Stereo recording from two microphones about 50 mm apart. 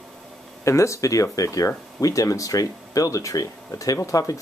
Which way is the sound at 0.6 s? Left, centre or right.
Left.